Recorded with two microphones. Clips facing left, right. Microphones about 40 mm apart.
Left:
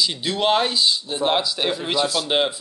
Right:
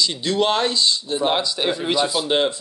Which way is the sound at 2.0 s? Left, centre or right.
Centre.